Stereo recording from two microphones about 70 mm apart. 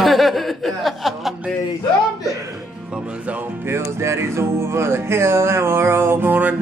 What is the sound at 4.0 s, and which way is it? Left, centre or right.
Music, right.